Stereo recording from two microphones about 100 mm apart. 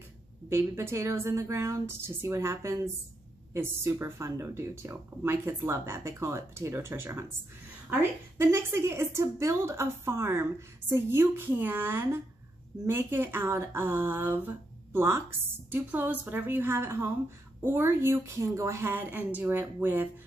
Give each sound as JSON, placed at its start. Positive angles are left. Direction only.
{"t": 0.5, "sound": "speech", "side_deg": -25}
{"t": 8.4, "sound": "speech", "side_deg": -30}